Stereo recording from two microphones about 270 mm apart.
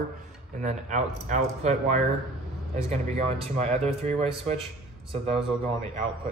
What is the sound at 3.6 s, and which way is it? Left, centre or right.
Speech, right.